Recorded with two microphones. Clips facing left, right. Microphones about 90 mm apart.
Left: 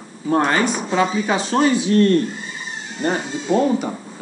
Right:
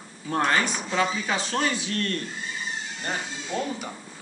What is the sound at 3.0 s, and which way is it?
Speech, 35° left (ahead or behind).